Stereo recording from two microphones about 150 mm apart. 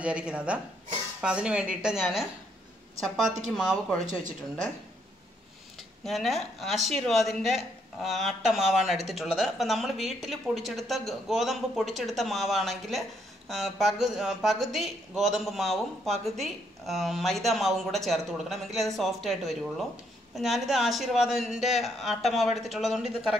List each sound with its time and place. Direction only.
0.0 s a woman's voice: 5° right (ahead or behind)
3.4 s speech: centre (ahead or behind)
4.0 s speech: 55° right (ahead or behind)
5.8 s speech: centre (ahead or behind)